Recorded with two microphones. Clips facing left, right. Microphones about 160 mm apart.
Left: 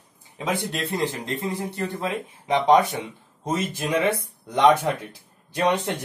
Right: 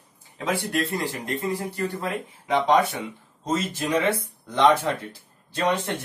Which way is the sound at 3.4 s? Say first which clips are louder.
Even; 15° left (ahead or behind).